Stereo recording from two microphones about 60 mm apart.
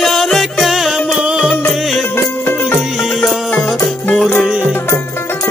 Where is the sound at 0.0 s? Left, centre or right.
Centre.